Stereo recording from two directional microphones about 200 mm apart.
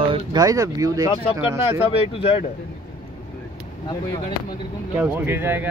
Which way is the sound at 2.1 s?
25° left (ahead or behind).